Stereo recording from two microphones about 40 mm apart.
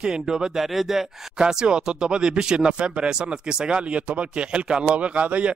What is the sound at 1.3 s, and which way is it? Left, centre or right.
A man's voice, centre.